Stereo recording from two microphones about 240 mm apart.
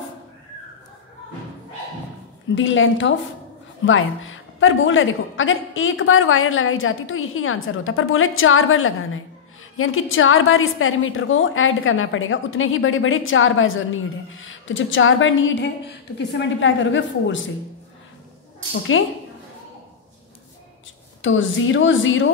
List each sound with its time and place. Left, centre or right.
2.5 s a woman's voice: left
18.9 s a woman's voice: left
21.2 s a woman's voice: left